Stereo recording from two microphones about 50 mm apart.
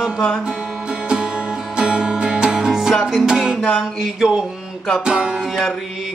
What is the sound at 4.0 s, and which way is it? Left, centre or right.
Speech, centre.